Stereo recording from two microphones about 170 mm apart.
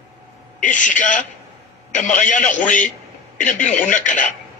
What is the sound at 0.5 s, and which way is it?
Speech, 50° left (ahead or behind).